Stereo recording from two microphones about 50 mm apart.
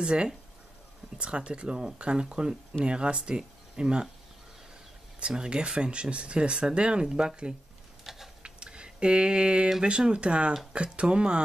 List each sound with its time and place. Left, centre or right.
0.0 s speech: right
5.2 s speech: centre
8.0 s a sound: centre
8.4 s speech: centre